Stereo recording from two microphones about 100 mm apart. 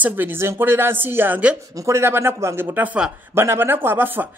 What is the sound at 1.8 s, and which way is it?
Speech, 30° right (ahead or behind).